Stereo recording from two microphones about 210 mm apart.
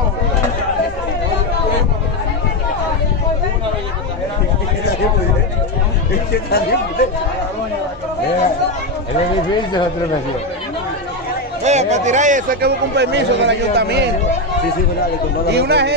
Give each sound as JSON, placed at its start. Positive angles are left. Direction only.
{"t": 6.3, "sound": "speech", "side_deg": 50}
{"t": 11.6, "sound": "speech", "side_deg": -35}
{"t": 15.5, "sound": "speech", "side_deg": -55}